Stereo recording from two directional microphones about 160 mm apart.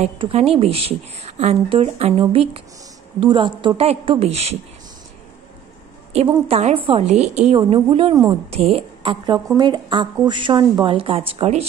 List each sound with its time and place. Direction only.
0.0 s a woman's voice: 40° right (ahead or behind)
6.4 s a woman's voice: 40° right (ahead or behind)